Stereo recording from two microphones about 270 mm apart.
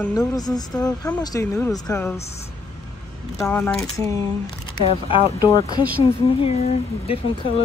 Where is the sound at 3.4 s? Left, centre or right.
Centre.